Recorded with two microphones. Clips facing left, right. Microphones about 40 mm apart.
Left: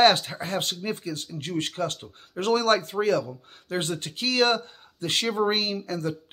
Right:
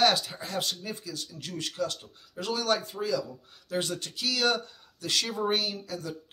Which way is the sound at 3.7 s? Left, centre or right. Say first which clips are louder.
Left 3 dB; left.